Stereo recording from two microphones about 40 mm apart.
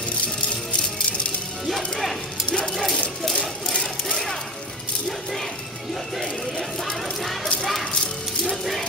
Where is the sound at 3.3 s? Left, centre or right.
Left.